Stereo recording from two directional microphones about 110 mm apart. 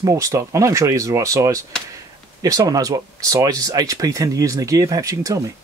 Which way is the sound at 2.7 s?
30° right (ahead or behind).